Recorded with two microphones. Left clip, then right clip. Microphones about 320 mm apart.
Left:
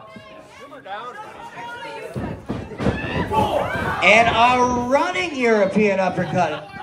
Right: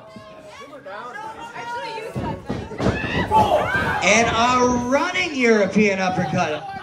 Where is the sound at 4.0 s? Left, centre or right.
Left.